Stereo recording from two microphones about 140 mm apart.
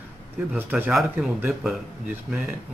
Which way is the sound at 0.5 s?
10° right (ahead or behind).